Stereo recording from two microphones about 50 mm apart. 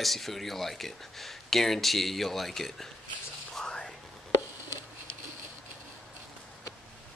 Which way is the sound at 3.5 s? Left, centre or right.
Centre.